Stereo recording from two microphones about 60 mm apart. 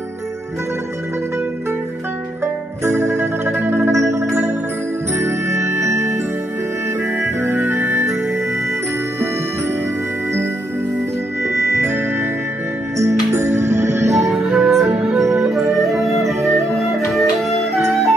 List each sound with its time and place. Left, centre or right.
2.4 s music: right
3.9 s music: right
7.5 s organ: right
11.4 s music: right
14.3 s music: centre